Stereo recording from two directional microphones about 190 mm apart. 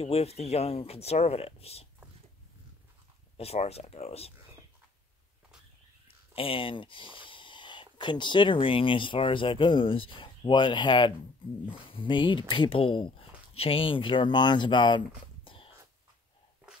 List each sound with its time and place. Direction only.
0.0 s speech: 30° left (ahead or behind)
3.3 s speech: 35° left (ahead or behind)
6.3 s speech: 30° left (ahead or behind)